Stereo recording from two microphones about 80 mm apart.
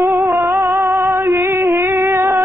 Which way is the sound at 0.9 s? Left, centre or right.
Right.